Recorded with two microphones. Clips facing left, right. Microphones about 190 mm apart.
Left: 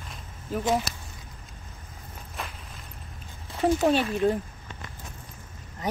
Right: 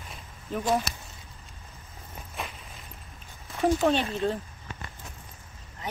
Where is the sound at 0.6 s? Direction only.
20° left (ahead or behind).